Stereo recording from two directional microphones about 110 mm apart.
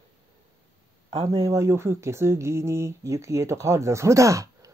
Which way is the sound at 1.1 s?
60° right (ahead or behind).